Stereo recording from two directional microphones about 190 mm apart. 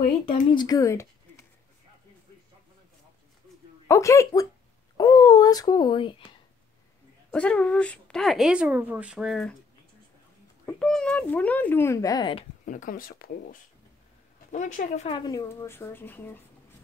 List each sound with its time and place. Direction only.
0.5 s speech: 20° left (ahead or behind)
3.8 s speech: 15° left (ahead or behind)
4.9 s a sound: 20° left (ahead or behind)
7.2 s speech: 5° left (ahead or behind)
10.8 s speech: 5° left (ahead or behind); by 12.4 s 25° left (ahead or behind)
12.6 s speech: 45° left (ahead or behind)
15.1 s speech: 20° left (ahead or behind)